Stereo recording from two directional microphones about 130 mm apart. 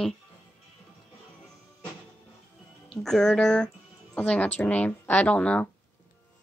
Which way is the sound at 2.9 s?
5° left (ahead or behind).